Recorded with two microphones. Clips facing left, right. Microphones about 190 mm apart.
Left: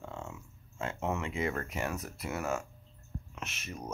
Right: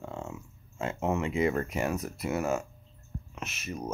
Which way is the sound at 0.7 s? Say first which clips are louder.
Right 5 dB; 15° right (ahead or behind).